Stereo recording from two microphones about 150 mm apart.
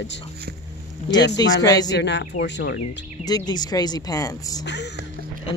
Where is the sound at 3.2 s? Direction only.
25° left (ahead or behind).